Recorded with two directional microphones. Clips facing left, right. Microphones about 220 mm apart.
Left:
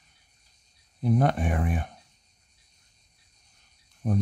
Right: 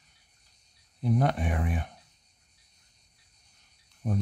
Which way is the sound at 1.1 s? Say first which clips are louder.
Left 3 dB; 50° left (ahead or behind).